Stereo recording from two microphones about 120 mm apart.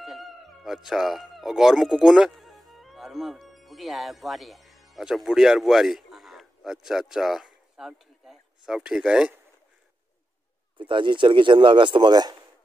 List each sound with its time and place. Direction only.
0.0 s speech: centre (ahead or behind)
10.8 s speech: 40° right (ahead or behind)